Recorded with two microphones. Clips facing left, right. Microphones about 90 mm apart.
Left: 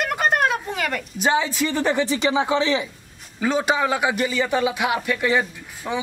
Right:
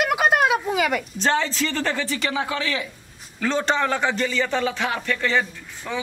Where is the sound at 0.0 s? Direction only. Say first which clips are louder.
Right 1 dB; 5° right (ahead or behind).